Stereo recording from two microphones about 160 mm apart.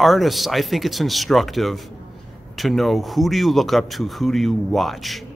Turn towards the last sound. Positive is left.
turn(degrees=0)  # may be behind; listen again after turning